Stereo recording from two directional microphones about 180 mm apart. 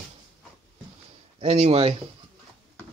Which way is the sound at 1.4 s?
35° right (ahead or behind).